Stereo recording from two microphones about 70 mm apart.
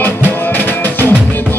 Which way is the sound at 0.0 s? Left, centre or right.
Left.